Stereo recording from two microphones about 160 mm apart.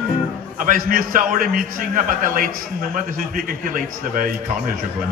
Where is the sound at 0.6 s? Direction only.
60° right (ahead or behind).